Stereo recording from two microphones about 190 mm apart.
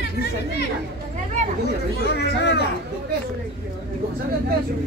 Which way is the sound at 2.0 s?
60° left (ahead or behind).